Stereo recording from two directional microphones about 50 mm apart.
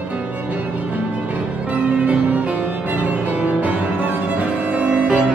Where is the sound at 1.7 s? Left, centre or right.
Right.